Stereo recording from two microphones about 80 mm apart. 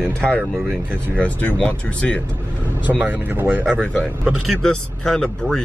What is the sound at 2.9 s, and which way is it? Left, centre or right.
Speech, right.